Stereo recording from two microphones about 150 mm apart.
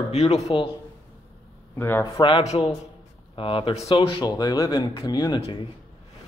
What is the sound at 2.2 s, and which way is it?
A man's voice, 35° left (ahead or behind).